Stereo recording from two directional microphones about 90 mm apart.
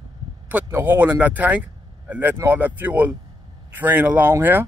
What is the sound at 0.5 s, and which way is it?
A man's voice, 20° right (ahead or behind).